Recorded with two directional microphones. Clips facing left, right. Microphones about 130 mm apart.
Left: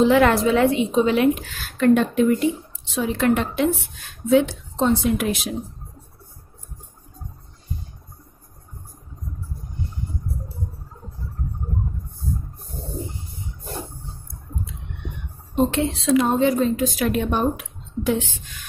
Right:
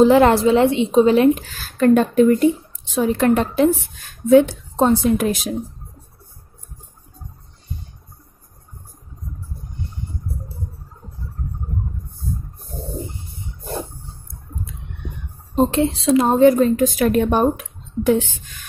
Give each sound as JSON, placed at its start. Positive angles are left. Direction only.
{"t": 0.0, "sound": "a woman's voice", "side_deg": -35}
{"t": 15.5, "sound": "a woman's voice", "side_deg": -35}